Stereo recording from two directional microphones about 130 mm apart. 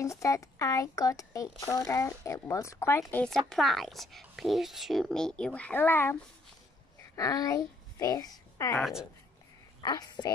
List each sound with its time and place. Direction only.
0.0 s speech: 25° left (ahead or behind)
3.4 s speech: centre (ahead or behind); by 6.1 s 15° left (ahead or behind)
7.2 s a child's voice: 30° left (ahead or behind)
9.8 s a woman's voice: 35° left (ahead or behind)